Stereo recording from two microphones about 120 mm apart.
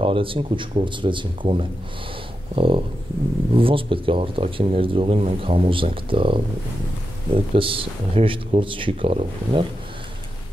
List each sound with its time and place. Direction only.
0.0 s speech: 45° right (ahead or behind)